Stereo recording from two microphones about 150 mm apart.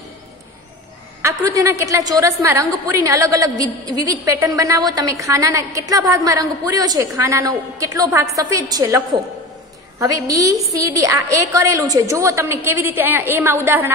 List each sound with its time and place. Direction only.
1.2 s a woman's voice: 20° right (ahead or behind)